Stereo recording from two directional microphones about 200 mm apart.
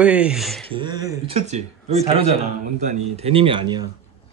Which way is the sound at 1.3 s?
35° right (ahead or behind).